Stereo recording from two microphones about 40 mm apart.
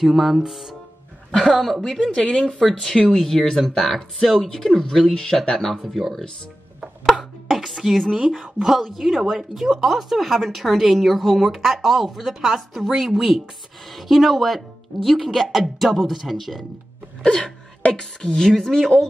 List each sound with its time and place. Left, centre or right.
0.0 s speech: centre
7.5 s a sound: centre
8.3 s speech: centre
17.2 s wail: left
18.2 s speech: centre